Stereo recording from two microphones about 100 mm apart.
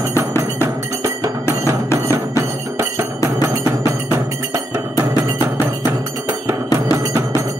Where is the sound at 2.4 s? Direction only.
30° right (ahead or behind).